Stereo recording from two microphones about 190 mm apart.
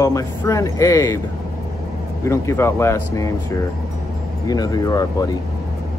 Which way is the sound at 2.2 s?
15° left (ahead or behind).